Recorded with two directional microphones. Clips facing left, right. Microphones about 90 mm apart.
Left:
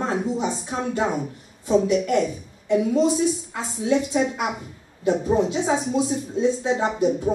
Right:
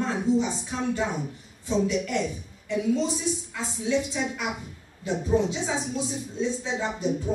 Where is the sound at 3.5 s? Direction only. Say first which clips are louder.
Left 4 dB; 50° left (ahead or behind).